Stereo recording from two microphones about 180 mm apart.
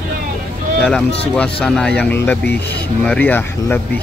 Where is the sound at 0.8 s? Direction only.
5° left (ahead or behind).